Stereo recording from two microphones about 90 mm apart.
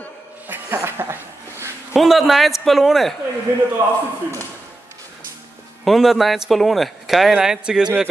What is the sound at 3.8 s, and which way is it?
Speech, 35° right (ahead or behind).